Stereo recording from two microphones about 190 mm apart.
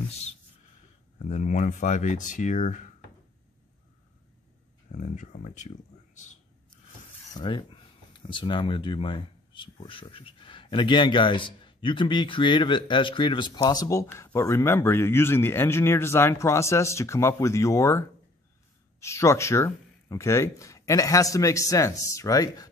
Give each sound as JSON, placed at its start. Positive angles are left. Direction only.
{"t": 1.2, "sound": "speech", "side_deg": 40}
{"t": 4.9, "sound": "speech", "side_deg": 40}
{"t": 7.3, "sound": "speech", "side_deg": 25}